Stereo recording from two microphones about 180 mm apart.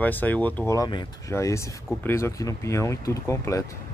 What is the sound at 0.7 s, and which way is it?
Speech, 25° left (ahead or behind).